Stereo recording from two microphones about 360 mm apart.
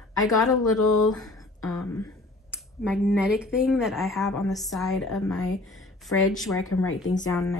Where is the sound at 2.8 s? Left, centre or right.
Centre.